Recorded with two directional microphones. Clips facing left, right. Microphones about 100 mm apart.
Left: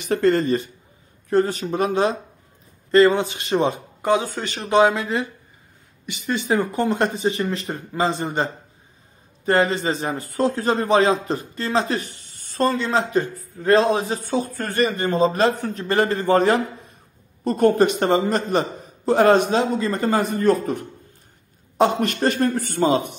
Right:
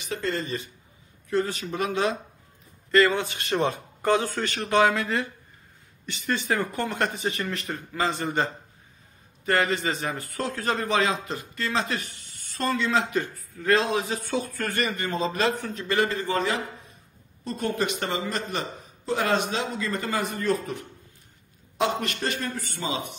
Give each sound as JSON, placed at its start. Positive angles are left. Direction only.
{"t": 0.0, "sound": "a man's voice", "side_deg": 55}
{"t": 1.3, "sound": "a man's voice", "side_deg": 40}
{"t": 9.5, "sound": "a man's voice", "side_deg": 25}